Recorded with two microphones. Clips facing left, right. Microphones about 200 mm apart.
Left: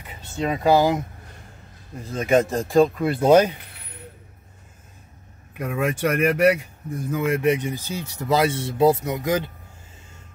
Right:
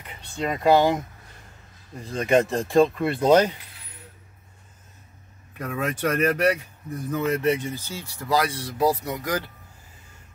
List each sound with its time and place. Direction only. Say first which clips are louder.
0.4 s speech: left 1 dB; centre (ahead or behind)
3.5 s keys jangling: left 4 dB; 60° left (ahead or behind)
5.6 s speech: left 3 dB; 10° left (ahead or behind)